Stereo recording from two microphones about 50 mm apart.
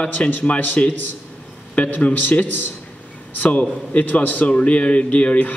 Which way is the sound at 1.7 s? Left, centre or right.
Left.